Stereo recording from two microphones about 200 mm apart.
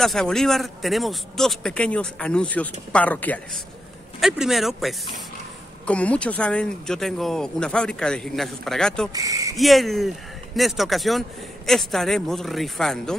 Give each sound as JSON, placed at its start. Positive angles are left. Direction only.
{"t": 0.0, "sound": "speech", "side_deg": 0}
{"t": 9.1, "sound": "speech", "side_deg": -15}
{"t": 9.6, "sound": "speech", "side_deg": 0}